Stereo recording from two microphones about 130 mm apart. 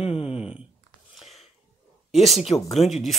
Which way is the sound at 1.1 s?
Centre (ahead or behind).